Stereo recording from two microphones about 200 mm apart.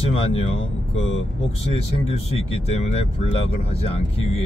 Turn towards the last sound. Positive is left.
turn(degrees=30)  # may be behind; listen again after turning